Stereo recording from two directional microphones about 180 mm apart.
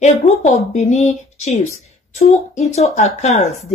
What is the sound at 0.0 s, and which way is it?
Speech, 40° left (ahead or behind).